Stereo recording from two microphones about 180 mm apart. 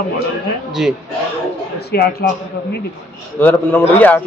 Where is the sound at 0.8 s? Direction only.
5° right (ahead or behind).